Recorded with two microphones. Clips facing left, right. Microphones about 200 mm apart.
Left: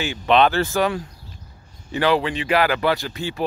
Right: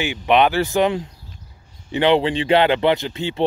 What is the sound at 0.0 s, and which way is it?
Speech, 15° right (ahead or behind).